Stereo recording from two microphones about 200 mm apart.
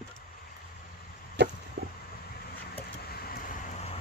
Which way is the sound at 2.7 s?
50° left (ahead or behind).